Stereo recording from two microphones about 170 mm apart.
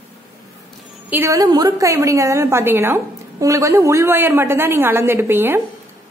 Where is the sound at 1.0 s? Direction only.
15° right (ahead or behind).